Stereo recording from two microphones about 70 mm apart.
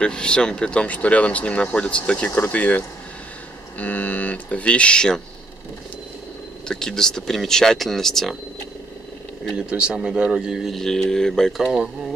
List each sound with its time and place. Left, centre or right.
0.0 s speech: centre
6.7 s speech: centre
9.7 s speech: centre
10.8 s speech: centre
11.5 s speech: centre